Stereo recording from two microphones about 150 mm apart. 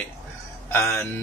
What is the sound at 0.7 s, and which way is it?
Speech, 15° left (ahead or behind).